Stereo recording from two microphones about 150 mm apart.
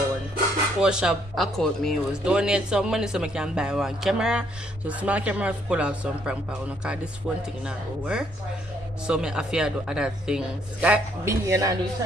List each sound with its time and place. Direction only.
0.7 s speech: 5° right (ahead or behind)
11.2 s speech: 20° right (ahead or behind)